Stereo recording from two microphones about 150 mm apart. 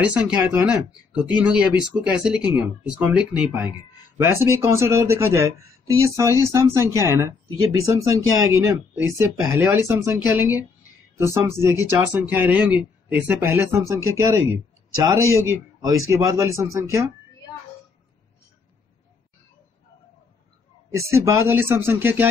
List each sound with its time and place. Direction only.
0.1 s speech: 5° right (ahead or behind)
20.9 s speech: 20° right (ahead or behind)